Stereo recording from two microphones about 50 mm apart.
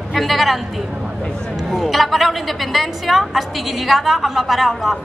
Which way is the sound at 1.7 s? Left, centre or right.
Centre.